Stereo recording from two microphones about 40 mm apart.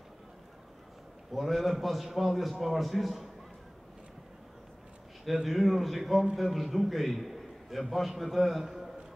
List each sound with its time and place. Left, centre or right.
1.3 s a man's voice: centre
5.2 s a man's voice: centre
8.6 s a sound: centre